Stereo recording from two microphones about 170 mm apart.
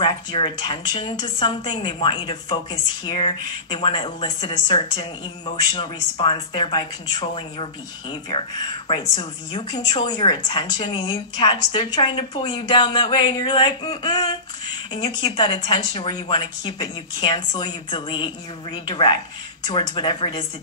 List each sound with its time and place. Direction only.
0.0 s speech: 30° left (ahead or behind)